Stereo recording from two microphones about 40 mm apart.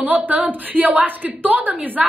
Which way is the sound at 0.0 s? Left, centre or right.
Right.